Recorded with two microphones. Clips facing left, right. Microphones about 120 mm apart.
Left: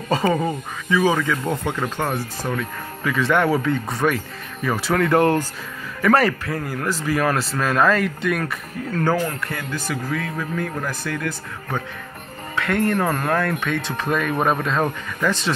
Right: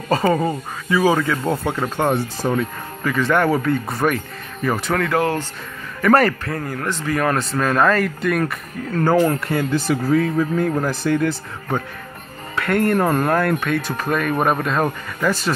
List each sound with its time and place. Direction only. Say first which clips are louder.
0.1 s speech: right 2 dB; centre (ahead or behind)
2.0 s speech: right 5 dB; 25° right (ahead or behind)
3.0 s speech: right 1 dB; centre (ahead or behind)
6.0 s speech: right 2 dB; centre (ahead or behind)
9.5 s speech: right 8 dB; 30° right (ahead or behind)
12.5 s speech: right 3 dB; 10° right (ahead or behind)